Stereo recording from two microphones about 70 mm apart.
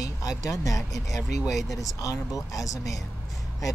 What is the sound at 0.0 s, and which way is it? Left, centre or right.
Speech, left.